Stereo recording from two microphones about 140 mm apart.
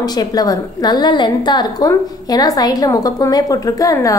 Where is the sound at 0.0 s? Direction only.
25° left (ahead or behind).